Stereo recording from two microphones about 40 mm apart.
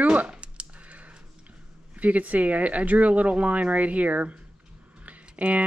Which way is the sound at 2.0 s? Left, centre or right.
Right.